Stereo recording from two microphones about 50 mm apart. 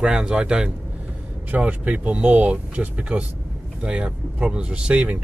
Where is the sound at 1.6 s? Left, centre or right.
Right.